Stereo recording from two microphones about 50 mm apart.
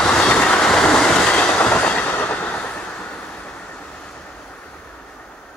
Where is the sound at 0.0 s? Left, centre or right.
Centre; by 2.5 s left.